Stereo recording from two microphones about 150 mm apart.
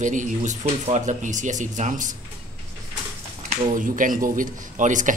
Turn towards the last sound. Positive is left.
turn(degrees=-55)  # may be behind; listen again after turning